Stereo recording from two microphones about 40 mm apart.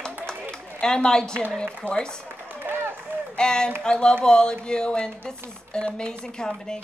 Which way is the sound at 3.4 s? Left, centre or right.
Centre.